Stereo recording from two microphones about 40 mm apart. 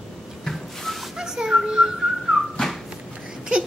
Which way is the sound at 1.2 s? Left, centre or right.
Centre.